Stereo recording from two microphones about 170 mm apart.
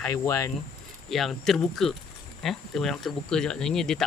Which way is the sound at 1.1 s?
Centre (ahead or behind).